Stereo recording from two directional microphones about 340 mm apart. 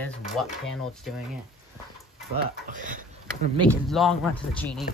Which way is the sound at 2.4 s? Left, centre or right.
Right.